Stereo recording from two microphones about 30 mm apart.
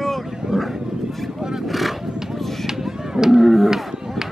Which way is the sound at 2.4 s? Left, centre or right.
Centre.